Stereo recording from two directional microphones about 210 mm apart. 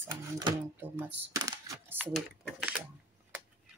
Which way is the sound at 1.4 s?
15° right (ahead or behind).